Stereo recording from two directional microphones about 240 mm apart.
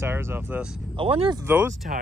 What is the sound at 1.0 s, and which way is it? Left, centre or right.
Speech, right.